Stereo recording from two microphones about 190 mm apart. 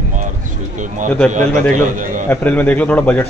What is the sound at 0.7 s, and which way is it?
A man's voice, 40° right (ahead or behind).